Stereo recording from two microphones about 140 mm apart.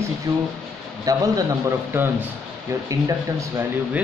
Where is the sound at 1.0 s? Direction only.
25° right (ahead or behind).